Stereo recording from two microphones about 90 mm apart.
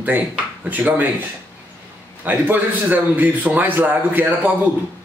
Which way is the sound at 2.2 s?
20° right (ahead or behind).